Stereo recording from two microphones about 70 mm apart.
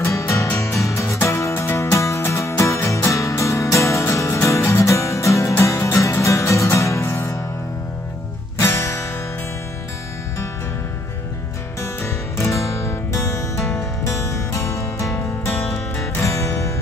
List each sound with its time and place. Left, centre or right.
0.0 s music: left
8.5 s music: left
12.0 s music: left
15.5 s music: centre
16.0 s music: left